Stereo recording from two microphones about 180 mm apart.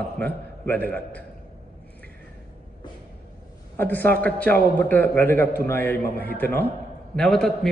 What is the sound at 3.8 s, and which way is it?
A man's voice, 10° left (ahead or behind).